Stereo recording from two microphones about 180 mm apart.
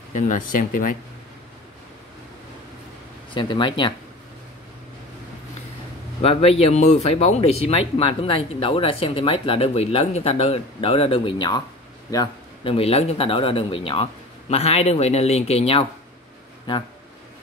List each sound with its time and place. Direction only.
0.1 s speech: 45° left (ahead or behind)
3.3 s speech: 25° left (ahead or behind)
6.2 s a man's voice: 35° left (ahead or behind)
12.7 s speech: 35° left (ahead or behind)